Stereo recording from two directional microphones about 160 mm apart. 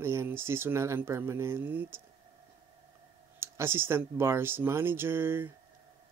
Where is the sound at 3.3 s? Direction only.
15° right (ahead or behind).